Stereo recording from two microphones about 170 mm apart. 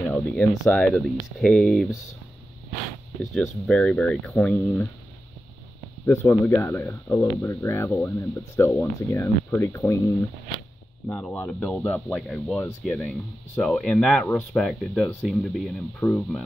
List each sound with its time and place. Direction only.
0.1 s speech: 5° left (ahead or behind)
3.2 s speech: centre (ahead or behind)
6.0 s speech: 15° left (ahead or behind)